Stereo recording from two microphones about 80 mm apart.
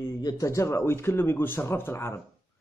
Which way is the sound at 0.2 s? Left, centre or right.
Left.